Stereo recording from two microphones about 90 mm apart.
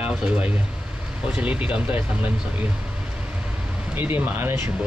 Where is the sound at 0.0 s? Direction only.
15° right (ahead or behind).